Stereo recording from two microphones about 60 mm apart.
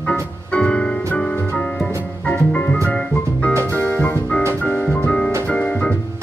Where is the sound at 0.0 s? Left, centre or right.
Left.